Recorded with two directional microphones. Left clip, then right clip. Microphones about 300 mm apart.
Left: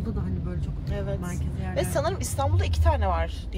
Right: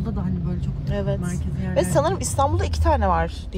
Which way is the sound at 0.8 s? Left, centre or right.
Right.